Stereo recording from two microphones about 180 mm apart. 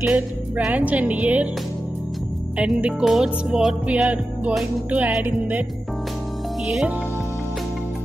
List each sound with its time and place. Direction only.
0.0 s music: 5° right (ahead or behind)
2.5 s music: 5° right (ahead or behind)